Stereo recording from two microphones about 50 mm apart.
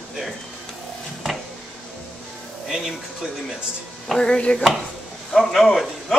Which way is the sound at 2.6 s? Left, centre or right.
Centre.